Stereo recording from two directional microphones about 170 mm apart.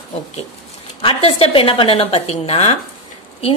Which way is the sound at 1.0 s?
30° left (ahead or behind).